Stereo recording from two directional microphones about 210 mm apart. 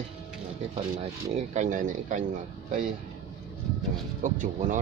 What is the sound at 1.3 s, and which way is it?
Speech, 35° right (ahead or behind).